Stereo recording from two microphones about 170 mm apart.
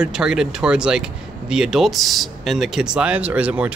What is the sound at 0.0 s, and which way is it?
Speech, 5° right (ahead or behind).